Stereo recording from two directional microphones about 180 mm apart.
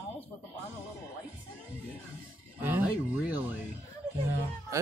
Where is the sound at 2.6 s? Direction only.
10° right (ahead or behind).